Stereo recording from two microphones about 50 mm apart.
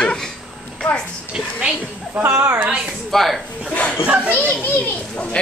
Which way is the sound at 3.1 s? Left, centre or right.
Centre.